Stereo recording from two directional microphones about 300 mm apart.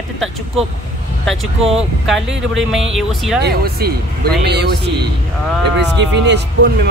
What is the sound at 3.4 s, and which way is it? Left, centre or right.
Speech, right.